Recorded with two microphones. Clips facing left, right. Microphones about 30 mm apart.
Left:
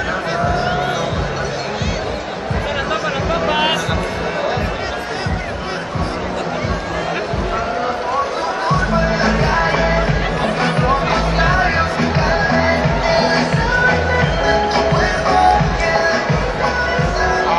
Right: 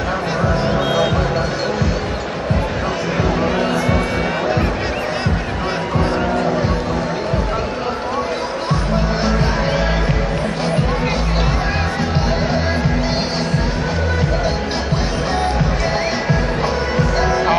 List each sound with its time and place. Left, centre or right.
9.2 s music: centre
10.9 s music: centre
12.5 s music: centre
13.4 s music: left
15.0 s music: centre
16.0 s music: centre